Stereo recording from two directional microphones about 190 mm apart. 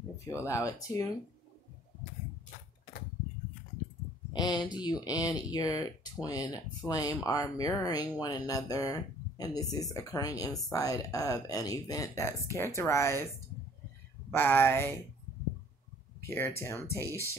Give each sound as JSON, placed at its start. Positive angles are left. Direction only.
{"t": 0.3, "sound": "speech", "side_deg": 15}
{"t": 4.3, "sound": "speech", "side_deg": 20}
{"t": 14.3, "sound": "speech", "side_deg": 10}
{"t": 16.3, "sound": "speech", "side_deg": 15}